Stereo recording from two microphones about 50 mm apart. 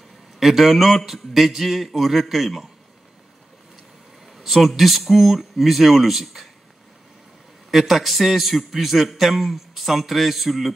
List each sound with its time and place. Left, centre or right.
0.4 s a man's voice: centre
4.3 s a man's voice: centre
7.7 s a man's voice: centre